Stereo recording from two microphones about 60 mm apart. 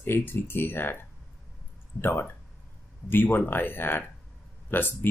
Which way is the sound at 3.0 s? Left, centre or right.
Left.